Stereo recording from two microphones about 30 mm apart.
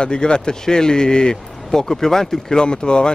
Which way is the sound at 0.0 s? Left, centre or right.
Left.